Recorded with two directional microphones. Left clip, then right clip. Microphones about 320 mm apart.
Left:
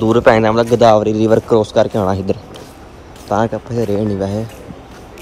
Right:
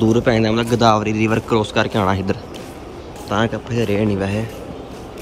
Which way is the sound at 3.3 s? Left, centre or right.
Centre.